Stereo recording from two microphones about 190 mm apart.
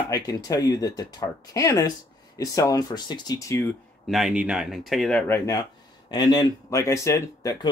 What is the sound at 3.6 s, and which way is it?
Speech, centre (ahead or behind).